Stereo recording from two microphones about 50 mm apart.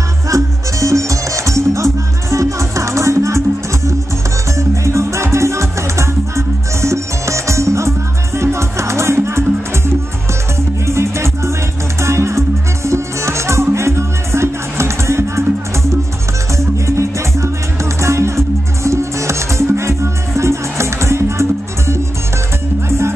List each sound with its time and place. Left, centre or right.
0.3 s music: right
10.9 s music: right
16.5 s music: right